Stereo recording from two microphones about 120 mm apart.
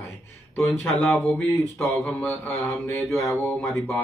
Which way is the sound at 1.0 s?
10° left (ahead or behind).